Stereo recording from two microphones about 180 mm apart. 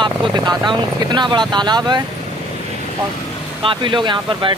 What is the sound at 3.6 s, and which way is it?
Speech, 25° right (ahead or behind).